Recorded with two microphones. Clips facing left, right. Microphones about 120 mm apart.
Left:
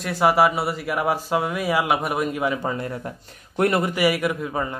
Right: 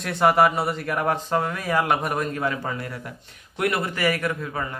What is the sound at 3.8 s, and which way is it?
Speech, 10° left (ahead or behind).